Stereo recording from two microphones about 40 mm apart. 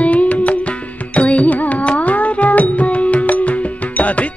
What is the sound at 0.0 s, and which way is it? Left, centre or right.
Music, left.